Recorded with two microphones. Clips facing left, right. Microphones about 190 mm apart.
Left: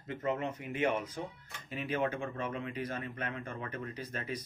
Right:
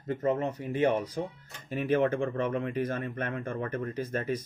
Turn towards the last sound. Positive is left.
turn(degrees=-45)  # may be behind; listen again after turning